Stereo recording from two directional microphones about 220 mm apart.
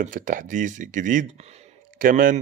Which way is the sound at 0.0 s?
35° right (ahead or behind).